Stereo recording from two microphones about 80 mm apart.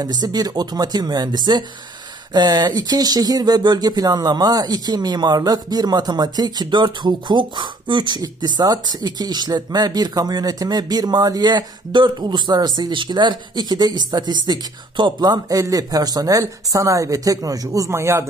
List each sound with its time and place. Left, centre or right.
0.0 s speech: right
8.2 s speech: right